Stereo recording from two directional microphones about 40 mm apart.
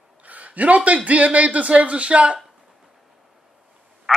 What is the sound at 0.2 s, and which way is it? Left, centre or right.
A man's voice, right.